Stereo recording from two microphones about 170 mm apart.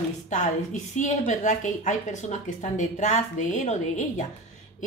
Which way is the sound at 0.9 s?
45° left (ahead or behind).